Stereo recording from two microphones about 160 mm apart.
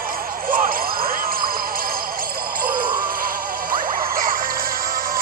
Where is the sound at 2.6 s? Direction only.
65° right (ahead or behind).